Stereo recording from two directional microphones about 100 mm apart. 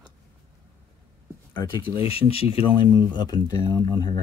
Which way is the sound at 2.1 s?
75° left (ahead or behind).